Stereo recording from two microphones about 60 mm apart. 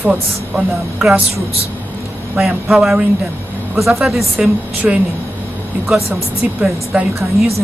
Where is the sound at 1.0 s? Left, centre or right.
Centre.